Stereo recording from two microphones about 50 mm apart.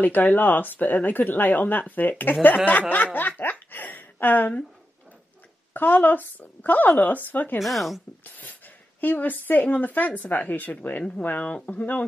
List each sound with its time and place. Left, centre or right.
0.0 s speech: left
2.9 s snicker: left
5.7 s speech: left
7.5 s speech: centre
9.0 s speech: left